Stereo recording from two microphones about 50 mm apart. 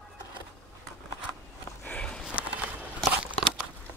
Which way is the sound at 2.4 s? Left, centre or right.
Right.